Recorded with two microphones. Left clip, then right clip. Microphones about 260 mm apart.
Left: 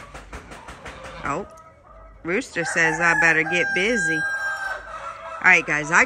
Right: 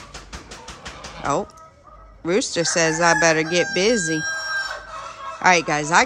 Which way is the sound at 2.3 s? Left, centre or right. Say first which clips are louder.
Right 4 dB; centre.